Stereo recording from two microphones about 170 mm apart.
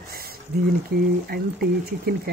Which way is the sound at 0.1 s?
60° right (ahead or behind).